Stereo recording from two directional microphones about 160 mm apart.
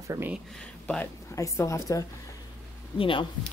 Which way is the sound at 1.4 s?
20° left (ahead or behind).